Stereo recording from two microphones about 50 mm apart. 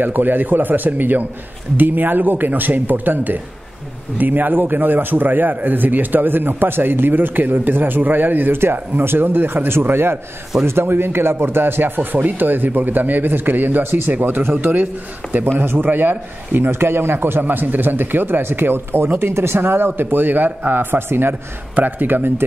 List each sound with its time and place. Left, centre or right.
0.0 s a man's voice: right
14.1 s a man's voice: right
15.2 s speech: left
15.8 s a man's voice: right